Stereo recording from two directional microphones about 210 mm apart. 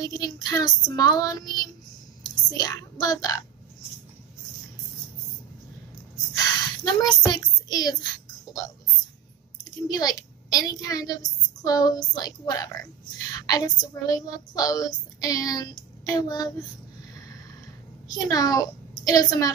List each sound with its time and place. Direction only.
0.0 s a woman's voice: 15° left (ahead or behind)
6.3 s a sound: 20° left (ahead or behind)
9.8 s a woman's voice: 20° left (ahead or behind)
18.0 s a child's voice: 20° left (ahead or behind)